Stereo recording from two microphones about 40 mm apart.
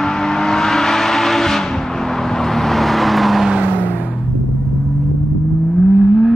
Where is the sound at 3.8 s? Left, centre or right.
Left.